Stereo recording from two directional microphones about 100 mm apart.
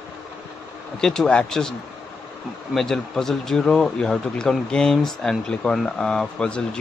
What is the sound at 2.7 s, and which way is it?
Speech, 5° left (ahead or behind).